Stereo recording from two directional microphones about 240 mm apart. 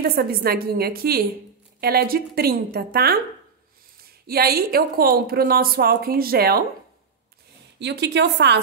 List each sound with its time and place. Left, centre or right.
0.0 s a woman's voice: right
4.3 s a woman's voice: right
7.8 s speech: right